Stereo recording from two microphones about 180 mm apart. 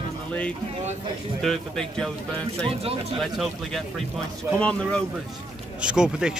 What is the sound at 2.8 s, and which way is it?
Speech, 35° right (ahead or behind).